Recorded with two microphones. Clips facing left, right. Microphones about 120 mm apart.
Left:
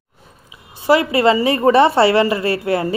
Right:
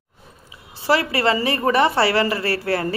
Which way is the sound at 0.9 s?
20° left (ahead or behind).